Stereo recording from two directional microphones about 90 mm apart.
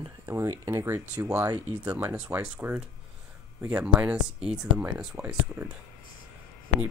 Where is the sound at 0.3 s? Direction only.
30° right (ahead or behind).